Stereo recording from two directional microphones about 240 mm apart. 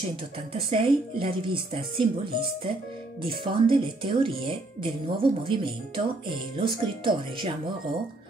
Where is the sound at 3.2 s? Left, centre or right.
Right.